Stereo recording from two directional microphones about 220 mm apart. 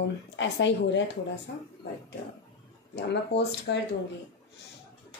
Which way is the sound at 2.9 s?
50° left (ahead or behind).